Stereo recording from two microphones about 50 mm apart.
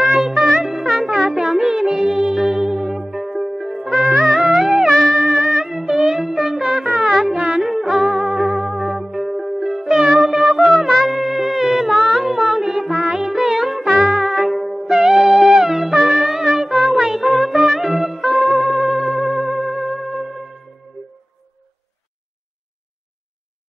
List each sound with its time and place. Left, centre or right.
0.0 s music: centre
7.3 s music: right
7.6 s music: centre
10.2 s wind instrument: centre
12.3 s music: centre